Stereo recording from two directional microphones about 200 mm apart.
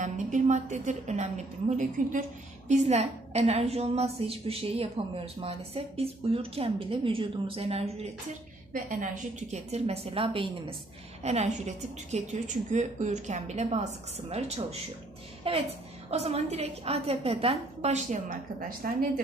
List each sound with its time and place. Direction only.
0.0 s a woman's voice: 35° right (ahead or behind)